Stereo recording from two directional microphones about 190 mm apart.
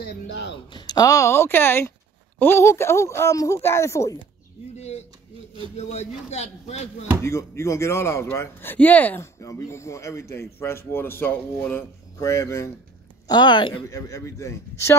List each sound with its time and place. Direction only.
0.0 s speech: 65° left (ahead or behind)
0.7 s speech: 25° left (ahead or behind)
4.7 s a man's voice: 35° left (ahead or behind)
7.2 s a woman's voice: 15° left (ahead or behind)